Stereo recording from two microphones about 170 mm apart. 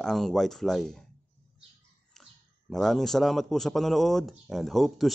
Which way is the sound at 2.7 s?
Centre (ahead or behind).